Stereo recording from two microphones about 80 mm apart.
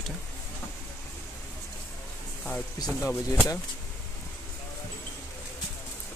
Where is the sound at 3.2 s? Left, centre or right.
Left.